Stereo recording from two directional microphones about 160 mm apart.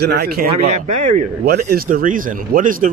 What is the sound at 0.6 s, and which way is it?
Speech, 45° right (ahead or behind).